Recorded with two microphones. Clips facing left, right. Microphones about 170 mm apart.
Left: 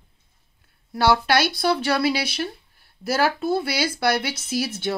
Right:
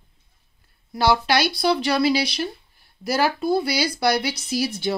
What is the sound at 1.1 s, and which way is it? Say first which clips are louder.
Speech: even; 5° left (ahead or behind).